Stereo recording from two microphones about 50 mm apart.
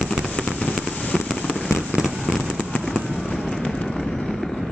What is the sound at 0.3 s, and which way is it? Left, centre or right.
Fireworks, centre.